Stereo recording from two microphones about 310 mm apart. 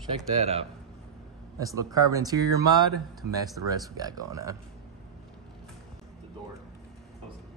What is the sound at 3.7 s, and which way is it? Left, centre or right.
Speech, centre.